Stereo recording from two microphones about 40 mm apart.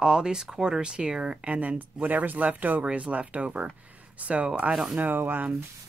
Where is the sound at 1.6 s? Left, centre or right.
Right.